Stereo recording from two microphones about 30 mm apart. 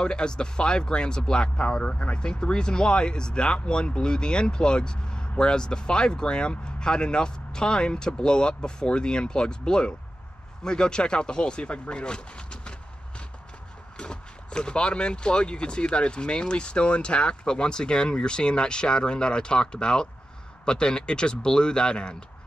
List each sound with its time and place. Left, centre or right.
0.0 s speech: left
2.1 s speech: left
13.9 s speech: left